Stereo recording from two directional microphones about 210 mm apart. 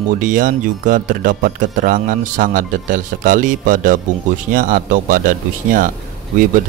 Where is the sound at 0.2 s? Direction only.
40° right (ahead or behind).